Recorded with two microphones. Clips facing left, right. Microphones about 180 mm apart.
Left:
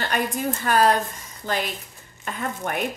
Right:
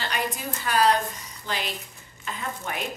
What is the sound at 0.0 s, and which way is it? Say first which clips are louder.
A woman's voice: left 5 dB; 50° left (ahead or behind).